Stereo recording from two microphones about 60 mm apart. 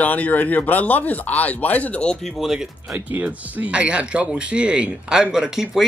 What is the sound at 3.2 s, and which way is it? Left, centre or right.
Speech, right.